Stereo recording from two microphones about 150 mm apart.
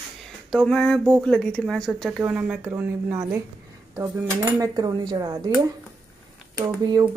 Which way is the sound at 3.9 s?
15° right (ahead or behind).